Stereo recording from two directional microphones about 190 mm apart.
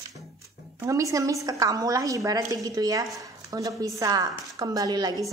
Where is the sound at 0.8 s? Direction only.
15° right (ahead or behind).